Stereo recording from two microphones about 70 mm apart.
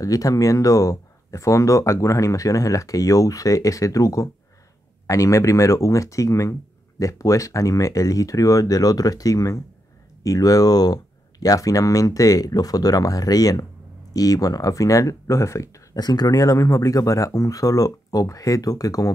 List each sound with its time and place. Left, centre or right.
0.0 s speech: left
16.0 s speech: left